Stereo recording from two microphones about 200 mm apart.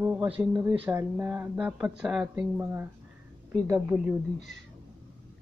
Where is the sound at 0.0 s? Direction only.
10° right (ahead or behind).